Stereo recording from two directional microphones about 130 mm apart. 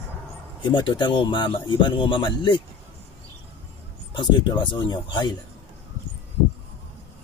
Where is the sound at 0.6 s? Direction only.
35° left (ahead or behind).